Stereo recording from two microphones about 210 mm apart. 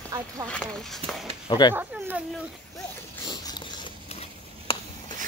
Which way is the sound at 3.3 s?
20° left (ahead or behind).